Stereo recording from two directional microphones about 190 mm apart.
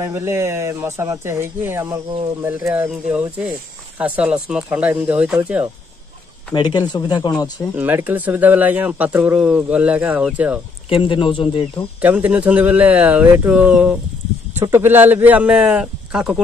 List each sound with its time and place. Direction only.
0.0 s speech: 15° right (ahead or behind)
6.5 s speech: 25° left (ahead or behind)
7.7 s speech: 10° right (ahead or behind)
10.9 s speech: 25° left (ahead or behind)
12.0 s speech: 10° right (ahead or behind)